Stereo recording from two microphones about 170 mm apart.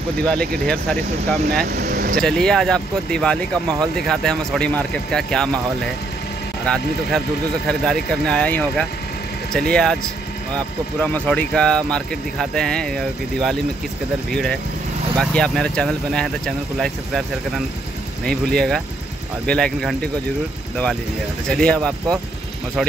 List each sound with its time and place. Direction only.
0.2 s speech: 5° left (ahead or behind)
1.7 s speech: 65° right (ahead or behind)
2.1 s speech: 5° left (ahead or behind)
6.6 s speech: 5° left (ahead or behind)
11.0 s speech: 10° left (ahead or behind)
18.2 s speech: 5° left (ahead or behind)
21.5 s speech: 5° left (ahead or behind)